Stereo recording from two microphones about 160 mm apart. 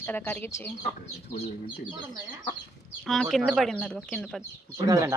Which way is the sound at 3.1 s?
Centre (ahead or behind).